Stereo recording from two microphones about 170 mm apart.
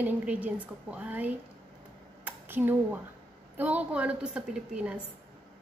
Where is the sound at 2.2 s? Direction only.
10° right (ahead or behind).